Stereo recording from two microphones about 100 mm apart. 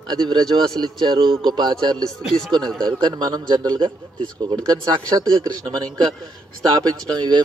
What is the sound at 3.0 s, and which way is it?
A man's voice, 45° right (ahead or behind).